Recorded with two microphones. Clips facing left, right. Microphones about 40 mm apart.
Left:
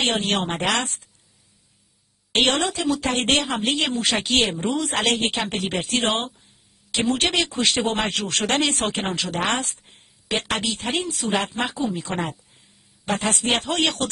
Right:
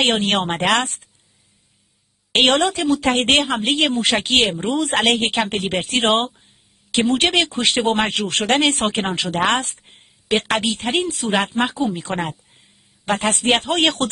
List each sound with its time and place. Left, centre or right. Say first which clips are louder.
0.0 s speech: right 4 dB; right
2.3 s a woman's voice: right 5 dB; right